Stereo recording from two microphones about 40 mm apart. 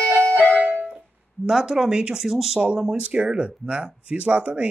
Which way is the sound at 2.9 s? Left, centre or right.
Right.